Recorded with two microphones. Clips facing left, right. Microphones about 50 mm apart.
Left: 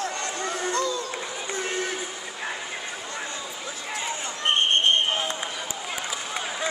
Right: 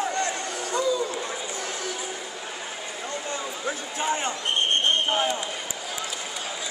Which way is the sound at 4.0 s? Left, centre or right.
Right.